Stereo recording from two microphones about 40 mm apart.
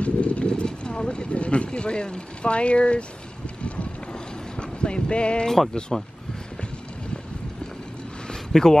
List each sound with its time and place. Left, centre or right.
0.0 s speech: left
3.6 s vehicle: left
4.6 s speech: left
8.3 s a sound: centre